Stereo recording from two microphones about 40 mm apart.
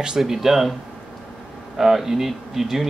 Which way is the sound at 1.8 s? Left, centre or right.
Centre.